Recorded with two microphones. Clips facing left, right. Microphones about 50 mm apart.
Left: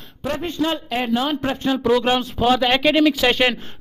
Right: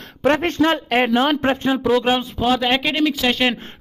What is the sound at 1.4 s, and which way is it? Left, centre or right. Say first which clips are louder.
Speech: right 3 dB; right.